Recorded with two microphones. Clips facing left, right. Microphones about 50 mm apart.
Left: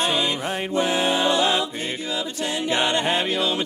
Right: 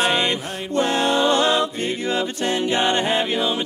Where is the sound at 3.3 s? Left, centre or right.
Centre.